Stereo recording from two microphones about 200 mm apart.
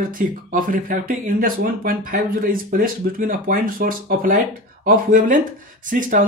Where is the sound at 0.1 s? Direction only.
45° right (ahead or behind).